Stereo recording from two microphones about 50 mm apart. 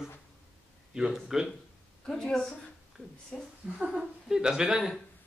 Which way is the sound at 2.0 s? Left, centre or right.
Centre.